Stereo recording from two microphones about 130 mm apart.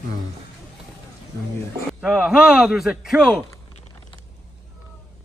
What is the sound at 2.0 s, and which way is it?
A man's voice, centre (ahead or behind).